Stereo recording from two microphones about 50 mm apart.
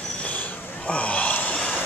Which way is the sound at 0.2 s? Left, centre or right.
Left.